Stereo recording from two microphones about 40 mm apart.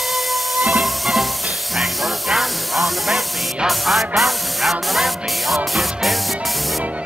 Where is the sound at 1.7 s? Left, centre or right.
Centre.